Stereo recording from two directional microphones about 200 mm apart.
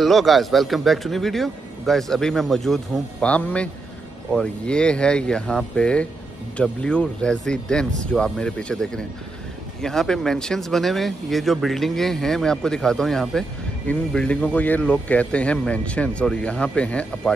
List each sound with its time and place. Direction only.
0.0 s speech: centre (ahead or behind)